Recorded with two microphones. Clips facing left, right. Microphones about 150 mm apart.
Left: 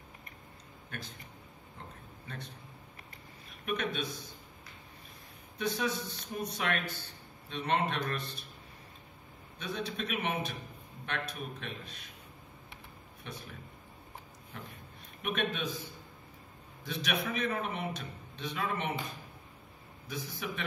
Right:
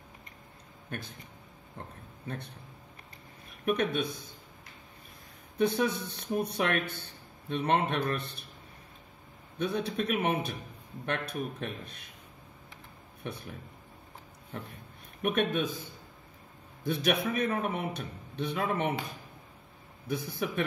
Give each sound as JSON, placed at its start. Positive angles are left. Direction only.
{"t": 0.8, "sound": "a man's voice", "side_deg": -55}
{"t": 2.2, "sound": "a man's voice", "side_deg": -60}
{"t": 3.6, "sound": "a man's voice", "side_deg": -55}
{"t": 5.6, "sound": "a man's voice", "side_deg": -55}
{"t": 9.6, "sound": "a man's voice", "side_deg": -55}
{"t": 13.2, "sound": "speech", "side_deg": -60}
{"t": 15.2, "sound": "speech", "side_deg": -55}
{"t": 16.8, "sound": "a man's voice", "side_deg": -55}